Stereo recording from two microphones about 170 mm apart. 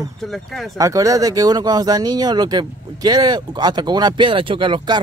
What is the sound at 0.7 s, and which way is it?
Speech, 20° right (ahead or behind).